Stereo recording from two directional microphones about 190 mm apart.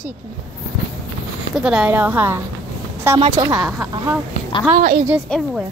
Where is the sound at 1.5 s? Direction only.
5° right (ahead or behind).